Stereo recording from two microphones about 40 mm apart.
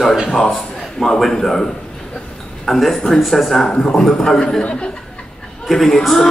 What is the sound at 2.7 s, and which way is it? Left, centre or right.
A man's voice, centre.